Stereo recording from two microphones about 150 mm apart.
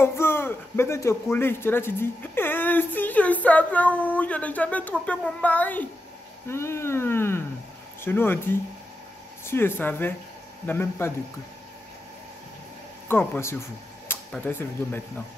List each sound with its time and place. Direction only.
0.0 s speech: 15° left (ahead or behind)
13.1 s speech: 15° left (ahead or behind)